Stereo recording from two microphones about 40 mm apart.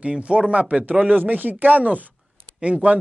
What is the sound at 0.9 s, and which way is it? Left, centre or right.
Speech, right.